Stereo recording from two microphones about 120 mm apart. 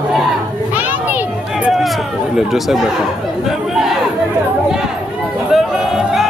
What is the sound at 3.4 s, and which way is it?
Speech, 5° right (ahead or behind).